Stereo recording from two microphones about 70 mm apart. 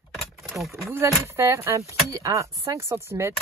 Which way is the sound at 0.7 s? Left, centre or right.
Right.